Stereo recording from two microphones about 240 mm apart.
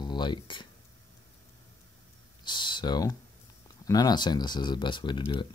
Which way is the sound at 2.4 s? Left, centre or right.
Centre.